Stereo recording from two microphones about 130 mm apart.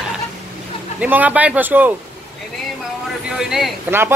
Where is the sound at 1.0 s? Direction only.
10° right (ahead or behind).